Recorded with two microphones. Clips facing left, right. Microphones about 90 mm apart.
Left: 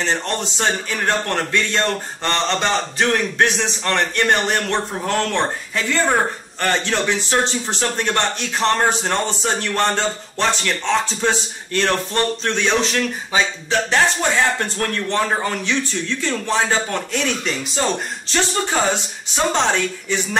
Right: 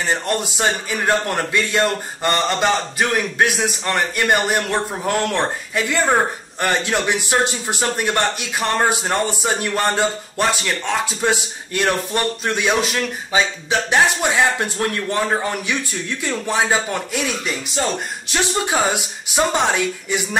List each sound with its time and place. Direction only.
0.0 s a man's voice: 10° right (ahead or behind)